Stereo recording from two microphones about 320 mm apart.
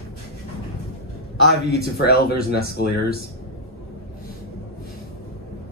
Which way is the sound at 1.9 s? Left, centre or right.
Left.